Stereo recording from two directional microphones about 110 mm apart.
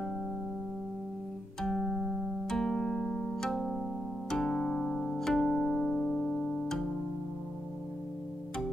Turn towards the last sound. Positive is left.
turn(degrees=0)  # may be behind; listen again after turning